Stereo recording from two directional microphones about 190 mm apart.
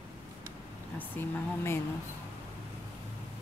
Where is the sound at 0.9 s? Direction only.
10° left (ahead or behind).